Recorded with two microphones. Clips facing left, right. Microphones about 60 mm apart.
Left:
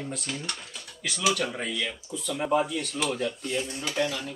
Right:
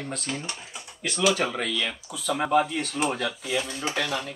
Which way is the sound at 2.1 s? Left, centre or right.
Right.